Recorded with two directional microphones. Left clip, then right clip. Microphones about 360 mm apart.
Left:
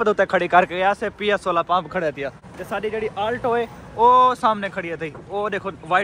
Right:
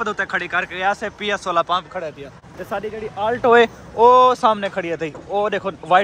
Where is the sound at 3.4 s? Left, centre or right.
Right.